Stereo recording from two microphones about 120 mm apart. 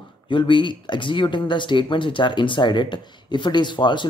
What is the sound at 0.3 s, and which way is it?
Speech, 40° left (ahead or behind).